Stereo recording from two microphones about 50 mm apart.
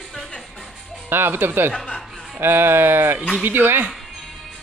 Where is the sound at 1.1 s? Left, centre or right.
Right.